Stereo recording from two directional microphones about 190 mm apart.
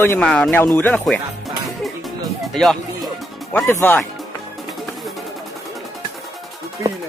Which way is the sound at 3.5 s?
10° left (ahead or behind).